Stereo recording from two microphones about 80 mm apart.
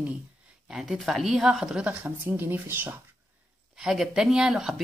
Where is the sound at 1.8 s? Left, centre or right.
Right.